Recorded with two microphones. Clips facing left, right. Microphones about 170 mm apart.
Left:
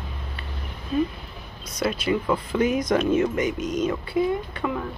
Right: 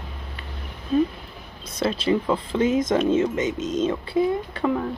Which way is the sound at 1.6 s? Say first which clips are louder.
Right 2 dB; 25° right (ahead or behind).